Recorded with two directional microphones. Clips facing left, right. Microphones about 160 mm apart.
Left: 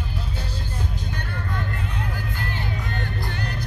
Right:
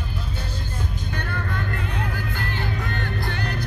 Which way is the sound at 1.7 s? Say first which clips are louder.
Right 2 dB; 75° right (ahead or behind).